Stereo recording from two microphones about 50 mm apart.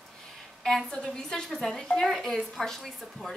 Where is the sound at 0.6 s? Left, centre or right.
Centre.